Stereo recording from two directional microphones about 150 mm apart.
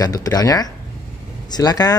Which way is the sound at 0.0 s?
25° left (ahead or behind).